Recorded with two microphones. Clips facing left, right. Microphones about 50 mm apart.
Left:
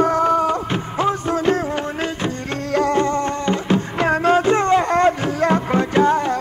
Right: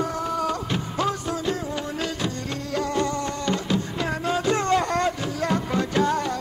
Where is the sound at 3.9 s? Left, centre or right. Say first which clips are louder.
Left 9 dB; left.